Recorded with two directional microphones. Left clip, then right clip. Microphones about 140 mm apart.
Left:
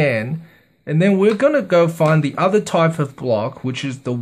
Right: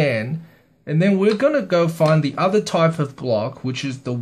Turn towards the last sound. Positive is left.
turn(degrees=25)  # may be behind; listen again after turning